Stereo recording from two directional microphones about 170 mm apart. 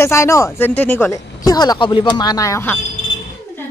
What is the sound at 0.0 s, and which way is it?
Speech, 15° left (ahead or behind).